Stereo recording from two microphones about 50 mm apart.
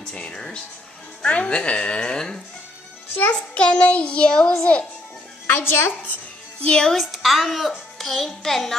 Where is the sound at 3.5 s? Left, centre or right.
Left.